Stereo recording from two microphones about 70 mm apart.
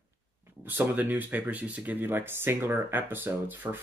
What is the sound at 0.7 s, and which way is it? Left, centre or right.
Speech, right.